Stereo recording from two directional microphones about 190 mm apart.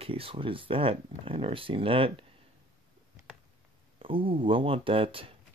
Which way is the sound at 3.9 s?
30° right (ahead or behind).